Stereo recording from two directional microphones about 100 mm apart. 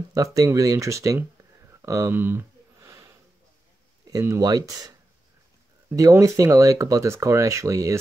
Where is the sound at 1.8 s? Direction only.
30° right (ahead or behind).